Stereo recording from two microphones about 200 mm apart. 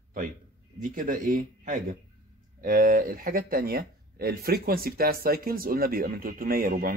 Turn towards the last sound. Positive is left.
turn(degrees=-45)  # may be behind; listen again after turning